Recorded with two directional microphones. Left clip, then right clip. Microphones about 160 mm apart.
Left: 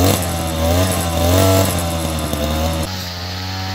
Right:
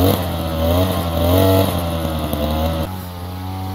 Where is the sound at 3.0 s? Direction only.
30° left (ahead or behind).